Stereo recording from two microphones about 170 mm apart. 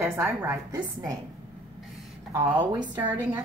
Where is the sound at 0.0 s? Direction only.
15° right (ahead or behind).